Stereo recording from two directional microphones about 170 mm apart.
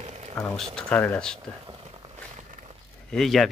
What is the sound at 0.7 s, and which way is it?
Speech, 10° left (ahead or behind).